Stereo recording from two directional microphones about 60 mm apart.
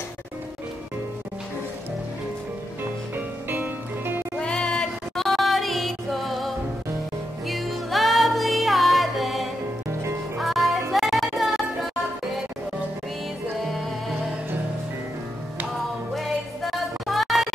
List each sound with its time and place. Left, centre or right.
3.2 s music: right
4.4 s music: centre
15.7 s music: centre